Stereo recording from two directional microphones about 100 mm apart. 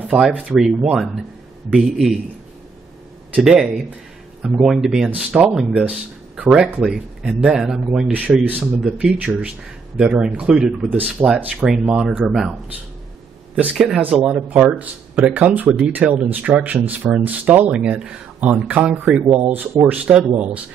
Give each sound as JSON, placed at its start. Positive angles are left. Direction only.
{"t": 0.1, "sound": "speech", "side_deg": -15}
{"t": 0.5, "sound": "speech", "side_deg": -5}
{"t": 3.3, "sound": "speech", "side_deg": -5}
{"t": 11.9, "sound": "speech", "side_deg": -15}
{"t": 13.6, "sound": "speech", "side_deg": -10}
{"t": 19.4, "sound": "speech", "side_deg": -20}